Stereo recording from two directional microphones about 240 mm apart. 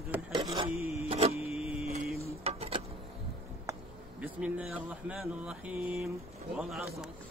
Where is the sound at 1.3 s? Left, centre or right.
Left.